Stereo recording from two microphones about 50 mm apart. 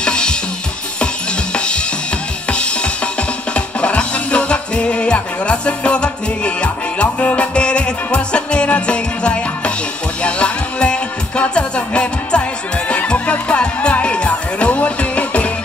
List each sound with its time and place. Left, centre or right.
0.0 s drum: centre
3.5 s music: left